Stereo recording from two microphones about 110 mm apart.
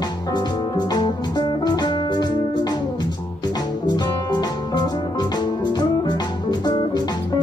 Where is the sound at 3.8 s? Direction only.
40° left (ahead or behind).